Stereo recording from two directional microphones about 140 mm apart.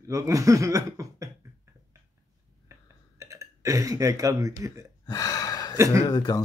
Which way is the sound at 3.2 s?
20° right (ahead or behind).